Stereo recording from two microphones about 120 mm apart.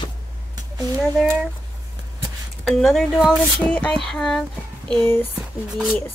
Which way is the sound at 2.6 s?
Centre (ahead or behind).